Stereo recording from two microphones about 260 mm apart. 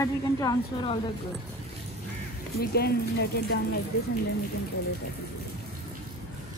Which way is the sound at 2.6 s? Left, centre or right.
Left.